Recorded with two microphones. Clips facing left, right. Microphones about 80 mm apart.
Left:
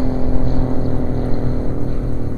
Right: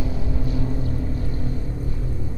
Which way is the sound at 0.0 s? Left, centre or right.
Left.